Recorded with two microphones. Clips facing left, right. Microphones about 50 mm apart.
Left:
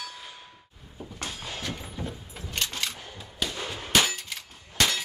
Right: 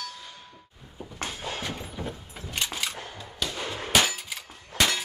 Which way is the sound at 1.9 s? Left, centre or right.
Centre.